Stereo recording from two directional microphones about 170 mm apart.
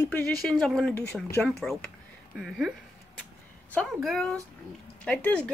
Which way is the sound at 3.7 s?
5° left (ahead or behind).